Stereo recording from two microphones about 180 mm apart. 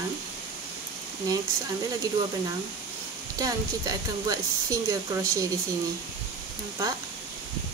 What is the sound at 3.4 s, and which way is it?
Speech, 20° right (ahead or behind).